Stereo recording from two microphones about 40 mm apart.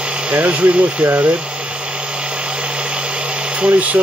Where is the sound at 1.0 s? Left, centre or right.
Right.